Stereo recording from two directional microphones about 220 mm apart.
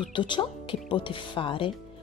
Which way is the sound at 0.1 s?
20° left (ahead or behind).